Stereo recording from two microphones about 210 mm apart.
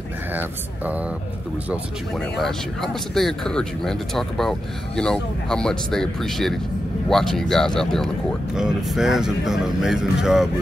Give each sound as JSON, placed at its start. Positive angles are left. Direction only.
{"t": 0.4, "sound": "speech", "side_deg": -5}